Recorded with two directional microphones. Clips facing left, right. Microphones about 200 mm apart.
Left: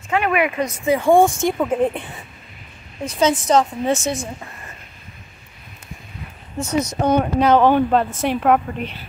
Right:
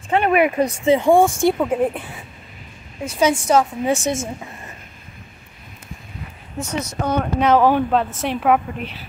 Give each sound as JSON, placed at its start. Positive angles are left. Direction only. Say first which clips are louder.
{"t": 0.1, "sound": "speech", "louder": "right 3 dB", "side_deg": -35}
{"t": 1.1, "sound": "speech", "louder": "even", "side_deg": -5}
{"t": 3.1, "sound": "a woman's voice", "louder": "even", "side_deg": -10}
{"t": 6.6, "sound": "speech", "louder": "left 4 dB", "side_deg": 15}
{"t": 7.3, "sound": "speech", "louder": "right 1 dB", "side_deg": 0}